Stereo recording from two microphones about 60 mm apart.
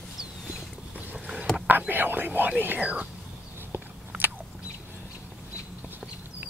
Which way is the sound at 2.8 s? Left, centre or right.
Right.